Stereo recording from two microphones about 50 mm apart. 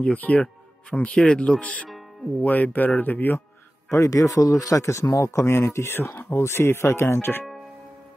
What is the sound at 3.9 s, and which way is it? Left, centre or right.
Speech, left.